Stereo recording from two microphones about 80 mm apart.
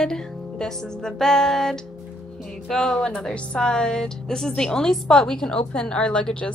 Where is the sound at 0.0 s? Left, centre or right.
Centre.